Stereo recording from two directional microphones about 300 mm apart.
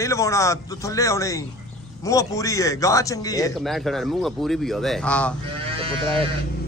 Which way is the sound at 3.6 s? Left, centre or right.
Centre.